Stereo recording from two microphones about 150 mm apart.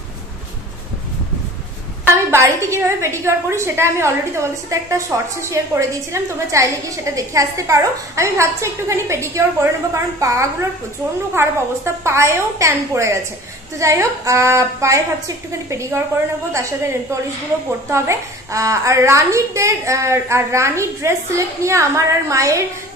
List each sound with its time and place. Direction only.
2.0 s a woman's voice: 20° right (ahead or behind)